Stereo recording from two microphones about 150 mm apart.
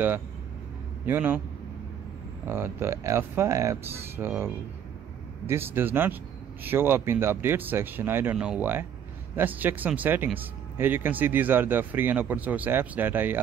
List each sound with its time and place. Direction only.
1.0 s speech: 15° right (ahead or behind)
2.4 s speech: 15° right (ahead or behind)
5.5 s speech: 15° right (ahead or behind)